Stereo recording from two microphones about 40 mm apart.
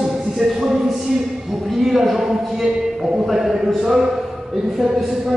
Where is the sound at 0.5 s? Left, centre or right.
Centre.